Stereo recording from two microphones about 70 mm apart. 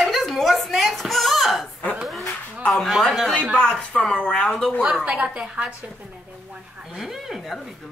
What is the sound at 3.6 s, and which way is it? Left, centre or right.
Speech, centre.